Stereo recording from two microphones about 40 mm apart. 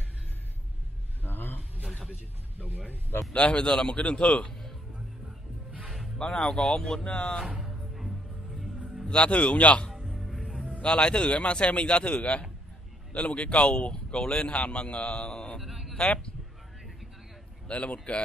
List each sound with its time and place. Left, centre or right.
1.2 s a sound: left
3.3 s speech: left
6.1 s speech: centre
7.6 s music: centre
9.1 s speech: left
9.9 s music: centre
10.8 s a man's voice: left
15.6 s a sound: centre
16.0 s a man's voice: left
17.6 s a man's voice: left